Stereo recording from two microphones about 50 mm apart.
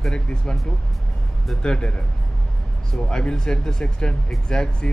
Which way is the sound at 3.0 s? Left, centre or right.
Centre.